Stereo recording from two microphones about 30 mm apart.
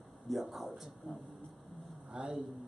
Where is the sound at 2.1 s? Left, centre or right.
Right.